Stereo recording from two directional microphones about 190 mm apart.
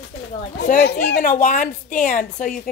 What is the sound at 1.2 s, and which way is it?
A woman's voice, 40° left (ahead or behind).